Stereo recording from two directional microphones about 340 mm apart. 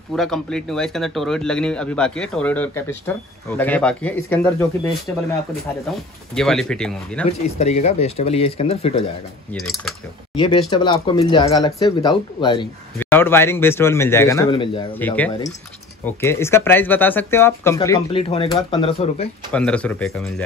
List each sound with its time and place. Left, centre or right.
0.1 s a man's voice: centre
7.8 s a man's voice: centre
9.5 s speech: centre
10.3 s a man's voice: centre
19.5 s speech: centre